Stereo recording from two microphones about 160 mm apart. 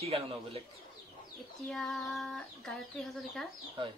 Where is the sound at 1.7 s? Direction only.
Centre (ahead or behind).